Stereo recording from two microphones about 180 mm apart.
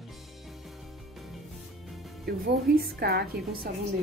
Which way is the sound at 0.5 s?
Centre (ahead or behind).